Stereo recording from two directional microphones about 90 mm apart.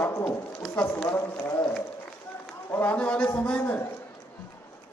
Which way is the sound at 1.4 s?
30° left (ahead or behind).